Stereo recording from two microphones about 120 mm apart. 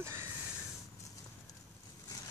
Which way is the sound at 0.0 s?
25° right (ahead or behind).